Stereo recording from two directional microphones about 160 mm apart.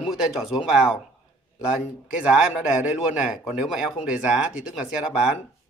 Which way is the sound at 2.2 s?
5° right (ahead or behind).